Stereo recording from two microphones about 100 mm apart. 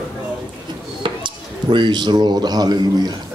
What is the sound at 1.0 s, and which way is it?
Speech, 50° right (ahead or behind).